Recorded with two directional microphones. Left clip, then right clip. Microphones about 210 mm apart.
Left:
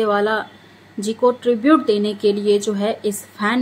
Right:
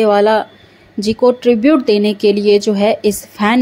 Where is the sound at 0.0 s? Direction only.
30° right (ahead or behind).